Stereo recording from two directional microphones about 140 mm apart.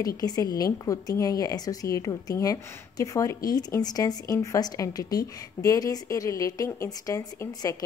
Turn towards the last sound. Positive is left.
turn(degrees=25)  # may be behind; listen again after turning